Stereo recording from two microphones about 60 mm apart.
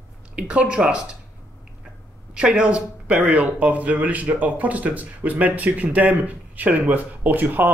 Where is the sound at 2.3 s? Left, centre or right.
Centre.